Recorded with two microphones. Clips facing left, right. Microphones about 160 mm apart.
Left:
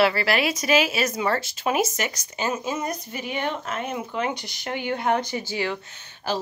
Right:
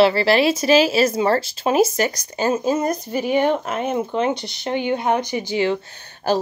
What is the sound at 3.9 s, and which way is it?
Speech, 25° right (ahead or behind).